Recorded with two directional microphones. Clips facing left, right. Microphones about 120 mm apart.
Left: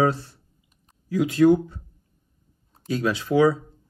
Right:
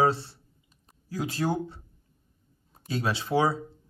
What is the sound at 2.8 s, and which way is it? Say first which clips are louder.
Speech: left 5 dB; 30° right (ahead or behind).